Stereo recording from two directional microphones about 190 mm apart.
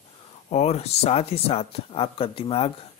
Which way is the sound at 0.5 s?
35° left (ahead or behind).